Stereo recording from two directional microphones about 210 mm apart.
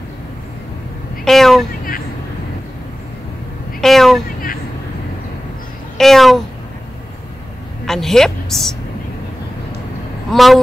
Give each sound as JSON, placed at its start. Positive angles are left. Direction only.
{"t": 1.2, "sound": "a woman's voice", "side_deg": 0}
{"t": 3.8, "sound": "a sound", "side_deg": 0}
{"t": 5.9, "sound": "a child's voice", "side_deg": 0}
{"t": 7.8, "sound": "a woman's voice", "side_deg": 0}
{"t": 10.3, "sound": "a woman's voice", "side_deg": 0}